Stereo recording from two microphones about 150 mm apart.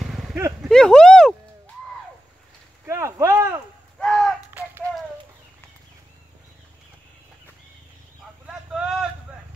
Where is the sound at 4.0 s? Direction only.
5° left (ahead or behind).